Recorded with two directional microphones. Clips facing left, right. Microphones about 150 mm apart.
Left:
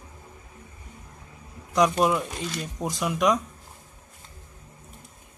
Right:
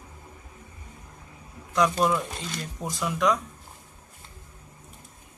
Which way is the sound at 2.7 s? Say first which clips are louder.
Left 2 dB; 20° left (ahead or behind).